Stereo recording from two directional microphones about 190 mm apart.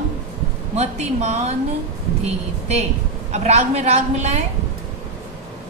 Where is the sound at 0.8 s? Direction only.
35° right (ahead or behind).